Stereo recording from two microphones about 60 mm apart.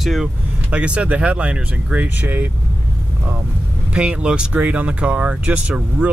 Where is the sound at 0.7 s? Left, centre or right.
Right.